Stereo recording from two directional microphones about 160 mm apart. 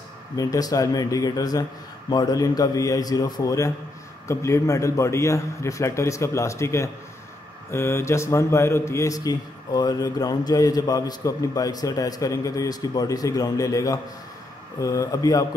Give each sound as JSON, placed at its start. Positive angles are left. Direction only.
{"t": 0.4, "sound": "speech", "side_deg": 20}